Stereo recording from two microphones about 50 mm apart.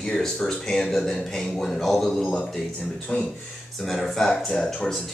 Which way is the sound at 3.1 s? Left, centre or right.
Left.